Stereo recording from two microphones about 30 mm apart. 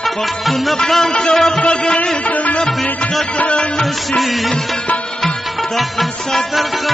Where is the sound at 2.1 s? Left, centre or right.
Left.